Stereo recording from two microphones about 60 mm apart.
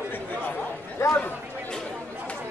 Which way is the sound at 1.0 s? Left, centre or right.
Left.